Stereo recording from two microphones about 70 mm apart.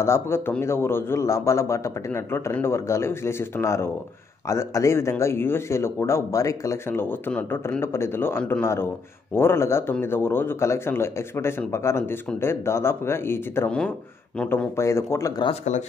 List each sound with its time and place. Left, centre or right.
0.0 s speech: left
6.9 s speech: left
13.8 s speech: centre
14.8 s speech: left